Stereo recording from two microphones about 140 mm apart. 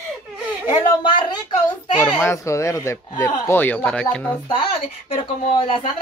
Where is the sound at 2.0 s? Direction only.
15° left (ahead or behind).